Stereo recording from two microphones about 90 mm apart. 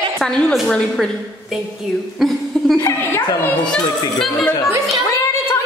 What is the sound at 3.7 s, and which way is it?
Speech, 5° left (ahead or behind).